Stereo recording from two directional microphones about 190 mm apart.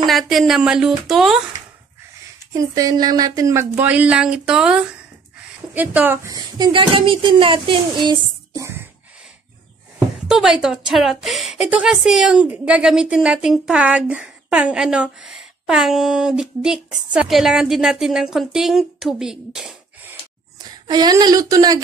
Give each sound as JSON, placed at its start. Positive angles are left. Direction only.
{"t": 0.3, "sound": "speech", "side_deg": 0}
{"t": 2.5, "sound": "a woman's voice", "side_deg": -20}
{"t": 9.9, "sound": "speech", "side_deg": -5}
{"t": 20.5, "sound": "speech", "side_deg": -20}